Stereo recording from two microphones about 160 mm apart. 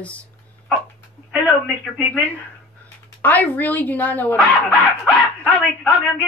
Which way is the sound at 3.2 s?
10° left (ahead or behind).